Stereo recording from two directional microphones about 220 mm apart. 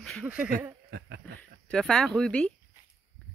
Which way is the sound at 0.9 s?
45° right (ahead or behind).